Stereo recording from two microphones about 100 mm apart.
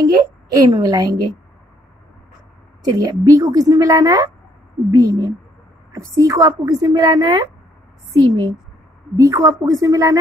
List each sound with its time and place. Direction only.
0.0 s a woman's voice: 45° right (ahead or behind)
2.8 s a woman's voice: 40° right (ahead or behind)
8.1 s a woman's voice: 50° right (ahead or behind)
9.1 s a woman's voice: 30° right (ahead or behind)